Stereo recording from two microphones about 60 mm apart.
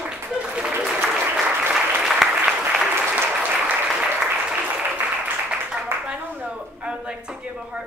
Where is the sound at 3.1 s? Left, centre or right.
Right.